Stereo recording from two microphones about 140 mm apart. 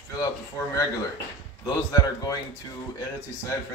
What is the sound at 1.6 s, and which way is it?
A man's voice, 25° left (ahead or behind).